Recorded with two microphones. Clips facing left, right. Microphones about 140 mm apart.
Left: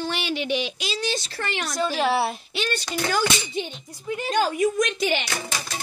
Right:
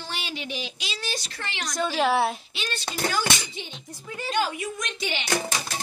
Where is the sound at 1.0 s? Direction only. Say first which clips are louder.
Left 6 dB; 25° left (ahead or behind).